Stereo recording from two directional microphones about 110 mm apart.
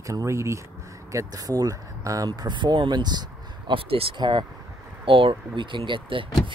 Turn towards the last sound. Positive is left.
turn(degrees=-50)  # may be behind; listen again after turning